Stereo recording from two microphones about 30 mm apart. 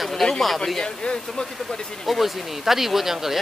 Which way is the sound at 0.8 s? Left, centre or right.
Left.